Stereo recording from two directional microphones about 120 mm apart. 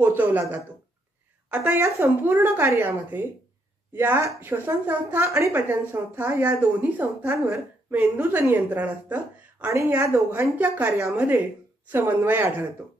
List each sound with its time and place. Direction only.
0.0 s a woman's voice: 15° right (ahead or behind)
1.6 s a woman's voice: 20° right (ahead or behind)